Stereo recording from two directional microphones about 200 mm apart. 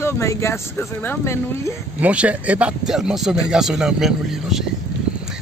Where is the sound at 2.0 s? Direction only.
5° right (ahead or behind).